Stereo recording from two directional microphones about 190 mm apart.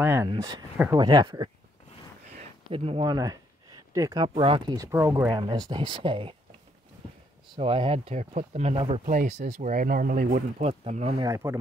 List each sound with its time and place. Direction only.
0.0 s speech: 15° right (ahead or behind)
2.3 s speech: 30° right (ahead or behind)
7.5 s speech: 30° right (ahead or behind)
9.0 s speech: 45° right (ahead or behind)
10.6 s speech: 35° right (ahead or behind)
11.1 s speech: 15° right (ahead or behind)